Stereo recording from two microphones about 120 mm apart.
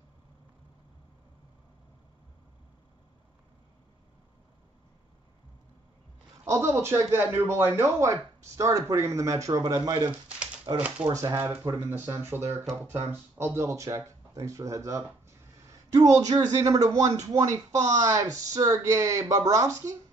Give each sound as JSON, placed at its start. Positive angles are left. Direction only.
{"t": 6.4, "sound": "a man's voice", "side_deg": -25}
{"t": 10.2, "sound": "a sound", "side_deg": -10}
{"t": 11.1, "sound": "a man's voice", "side_deg": -25}